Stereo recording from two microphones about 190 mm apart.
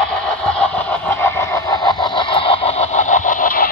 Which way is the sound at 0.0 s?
5° left (ahead or behind).